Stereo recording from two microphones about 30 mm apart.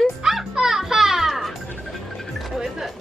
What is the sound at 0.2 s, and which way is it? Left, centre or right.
Music, centre.